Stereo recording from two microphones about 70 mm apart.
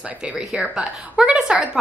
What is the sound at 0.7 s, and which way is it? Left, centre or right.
Speech, centre.